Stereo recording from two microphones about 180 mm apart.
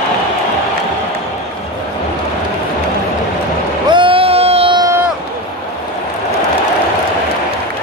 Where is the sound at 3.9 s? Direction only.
30° right (ahead or behind).